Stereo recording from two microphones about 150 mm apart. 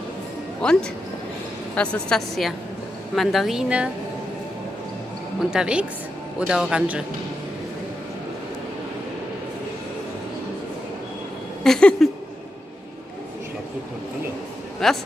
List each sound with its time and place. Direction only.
0.6 s speech: 5° left (ahead or behind)
5.5 s a man's voice: 5° right (ahead or behind)
11.6 s a sound: centre (ahead or behind)
14.8 s speech: centre (ahead or behind)